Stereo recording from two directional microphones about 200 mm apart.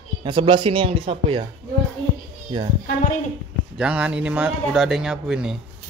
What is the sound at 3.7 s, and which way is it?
Speech, 5° right (ahead or behind).